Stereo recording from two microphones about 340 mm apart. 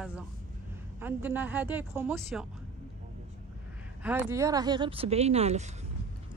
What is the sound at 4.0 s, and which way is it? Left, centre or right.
Speech, centre.